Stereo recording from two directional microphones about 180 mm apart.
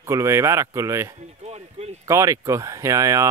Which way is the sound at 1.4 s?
35° right (ahead or behind).